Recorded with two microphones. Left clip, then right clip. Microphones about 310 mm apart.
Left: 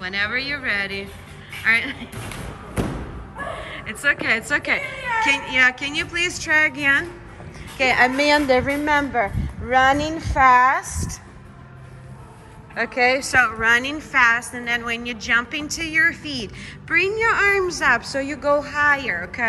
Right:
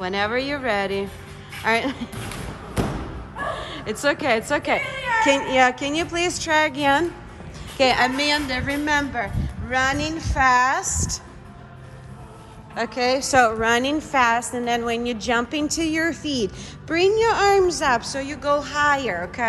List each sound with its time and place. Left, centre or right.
0.0 s a woman's voice: centre
2.1 s basketball bounce: centre
3.3 s a woman's voice: centre
12.7 s a woman's voice: centre